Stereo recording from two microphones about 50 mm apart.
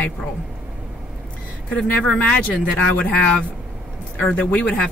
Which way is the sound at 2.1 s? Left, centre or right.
Left.